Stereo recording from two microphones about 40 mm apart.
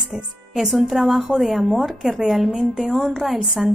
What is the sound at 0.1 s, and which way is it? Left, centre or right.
Speech, right.